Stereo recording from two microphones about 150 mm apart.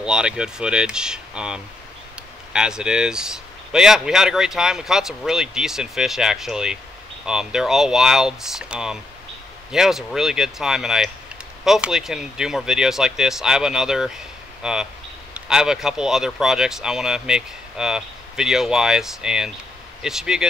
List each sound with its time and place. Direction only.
0.0 s speech: 5° right (ahead or behind)